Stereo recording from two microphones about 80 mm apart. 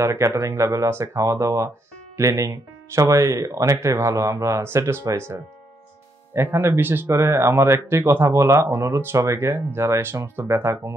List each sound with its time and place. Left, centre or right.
0.0 s speech: right